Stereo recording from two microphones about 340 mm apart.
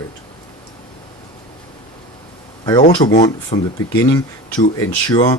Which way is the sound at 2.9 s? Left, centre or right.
Centre.